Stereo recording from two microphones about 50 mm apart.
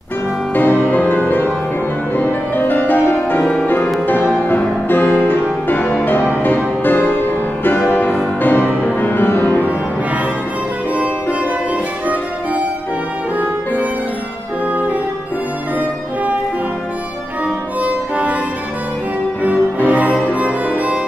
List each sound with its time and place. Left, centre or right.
0.6 s music: left
14.7 s music: right
17.8 s music: right
19.4 s music: right